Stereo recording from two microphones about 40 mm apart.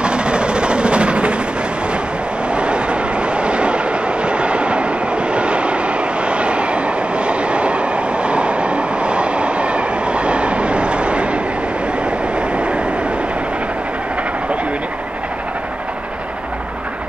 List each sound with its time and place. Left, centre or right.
0.0 s train: right
2.5 s train: right
12.4 s vehicle: right